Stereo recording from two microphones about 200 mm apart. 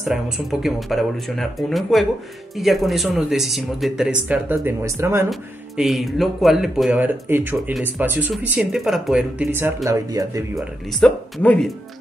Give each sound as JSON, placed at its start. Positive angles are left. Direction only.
{"t": 0.0, "sound": "speech", "side_deg": 0}
{"t": 5.3, "sound": "speech", "side_deg": 0}
{"t": 10.5, "sound": "speech", "side_deg": 0}